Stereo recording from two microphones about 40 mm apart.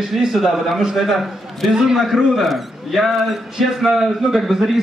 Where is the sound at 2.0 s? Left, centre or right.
Centre.